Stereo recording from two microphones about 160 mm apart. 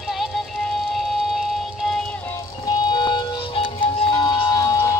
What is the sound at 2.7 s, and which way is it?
Music, 25° left (ahead or behind).